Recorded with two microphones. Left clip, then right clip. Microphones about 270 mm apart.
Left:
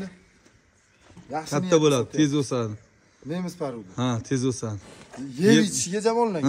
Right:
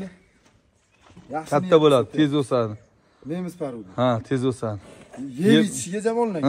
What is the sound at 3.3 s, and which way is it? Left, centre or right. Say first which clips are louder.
Speech: right 1 dB; left.